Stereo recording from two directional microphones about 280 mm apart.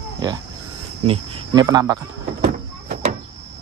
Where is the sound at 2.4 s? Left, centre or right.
Right.